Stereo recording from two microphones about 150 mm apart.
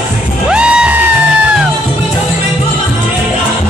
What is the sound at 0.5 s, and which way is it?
Music, 5° right (ahead or behind).